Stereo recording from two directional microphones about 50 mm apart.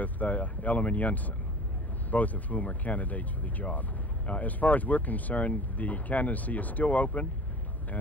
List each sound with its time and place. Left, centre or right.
0.0 s speech: left